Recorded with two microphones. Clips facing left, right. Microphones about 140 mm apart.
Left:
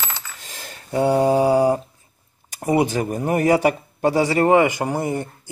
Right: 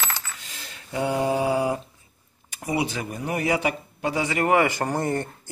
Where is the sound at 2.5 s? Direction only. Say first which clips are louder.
Left 7 dB; 45° left (ahead or behind).